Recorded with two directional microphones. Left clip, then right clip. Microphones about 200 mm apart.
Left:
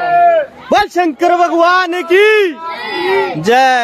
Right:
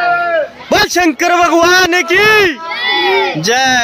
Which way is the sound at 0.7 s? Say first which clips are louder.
Right 2 dB; centre (ahead or behind).